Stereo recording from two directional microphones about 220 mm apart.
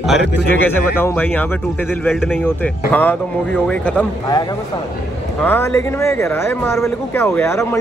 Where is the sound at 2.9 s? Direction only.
5° left (ahead or behind).